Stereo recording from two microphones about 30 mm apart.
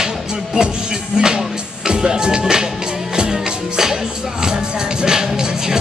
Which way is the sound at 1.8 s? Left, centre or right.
Right.